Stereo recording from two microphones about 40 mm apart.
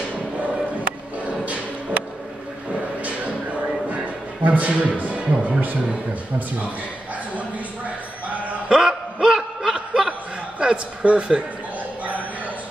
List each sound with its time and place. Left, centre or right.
1.4 s a sound: right
2.7 s music: right
8.6 s chuckle: centre
10.6 s speech: right